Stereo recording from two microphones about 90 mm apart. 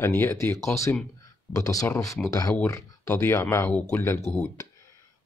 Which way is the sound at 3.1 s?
25° left (ahead or behind).